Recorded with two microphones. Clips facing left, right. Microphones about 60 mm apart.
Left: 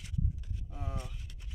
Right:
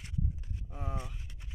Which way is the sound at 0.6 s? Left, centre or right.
Right.